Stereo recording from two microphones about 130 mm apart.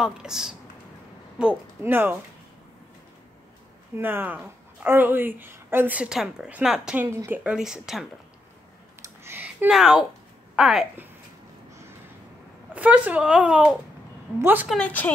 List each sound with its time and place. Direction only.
0.0 s a woman's voice: 5° right (ahead or behind)
3.9 s a woman's voice: 15° right (ahead or behind)
7.1 s a woman's voice: 20° right (ahead or behind)
9.0 s a sound: 20° right (ahead or behind)
9.7 s a woman's voice: 5° right (ahead or behind)
12.7 s a woman's voice: 10° right (ahead or behind)
14.8 s speech: 10° left (ahead or behind)